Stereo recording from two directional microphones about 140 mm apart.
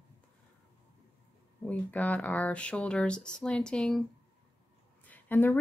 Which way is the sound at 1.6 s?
10° left (ahead or behind).